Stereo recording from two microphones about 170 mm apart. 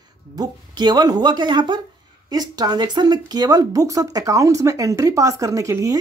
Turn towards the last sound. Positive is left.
turn(degrees=-20)  # may be behind; listen again after turning